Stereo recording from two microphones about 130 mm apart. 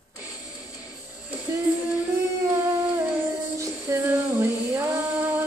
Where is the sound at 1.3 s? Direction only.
15° right (ahead or behind).